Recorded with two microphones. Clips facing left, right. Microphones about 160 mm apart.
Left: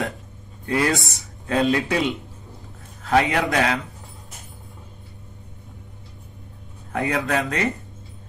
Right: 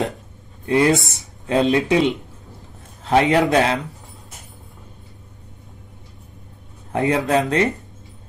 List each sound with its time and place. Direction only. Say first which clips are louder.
0.7 s speech: right 5 dB; 20° right (ahead or behind)
6.9 s speech: right 5 dB; 25° right (ahead or behind)